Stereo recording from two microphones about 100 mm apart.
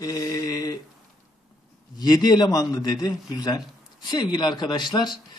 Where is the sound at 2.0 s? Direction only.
40° left (ahead or behind).